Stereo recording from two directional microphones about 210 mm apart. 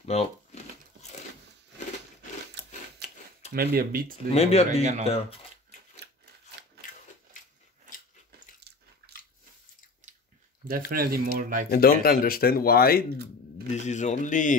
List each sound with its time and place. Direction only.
0.0 s speech: 30° left (ahead or behind)
3.5 s speech: 45° right (ahead or behind)
4.3 s speech: 30° left (ahead or behind)
5.0 s a sound: 30° left (ahead or behind)
6.0 s scissors: 50° right (ahead or behind)
10.7 s speech: 45° right (ahead or behind)
11.7 s speech: 45° left (ahead or behind)
13.7 s a man's voice: 35° left (ahead or behind)